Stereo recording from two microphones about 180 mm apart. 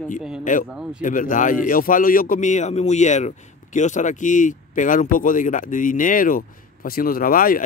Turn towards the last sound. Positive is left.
turn(degrees=50)  # may be behind; listen again after turning